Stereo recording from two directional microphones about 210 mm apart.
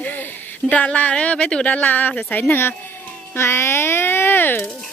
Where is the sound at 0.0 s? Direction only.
10° left (ahead or behind).